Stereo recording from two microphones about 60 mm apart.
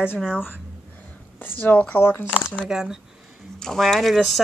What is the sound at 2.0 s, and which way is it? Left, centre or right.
Speech, left.